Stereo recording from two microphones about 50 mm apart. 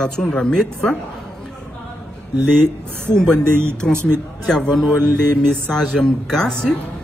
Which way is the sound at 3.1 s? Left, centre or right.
Centre.